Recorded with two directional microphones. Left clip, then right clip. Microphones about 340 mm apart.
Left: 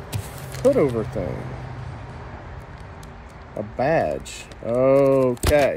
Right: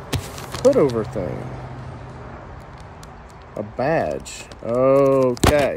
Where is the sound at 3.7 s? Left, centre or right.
Centre.